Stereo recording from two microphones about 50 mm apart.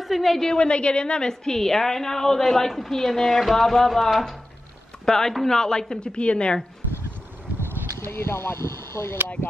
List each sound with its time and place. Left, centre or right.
0.0 s a woman's voice: centre
8.0 s speech: left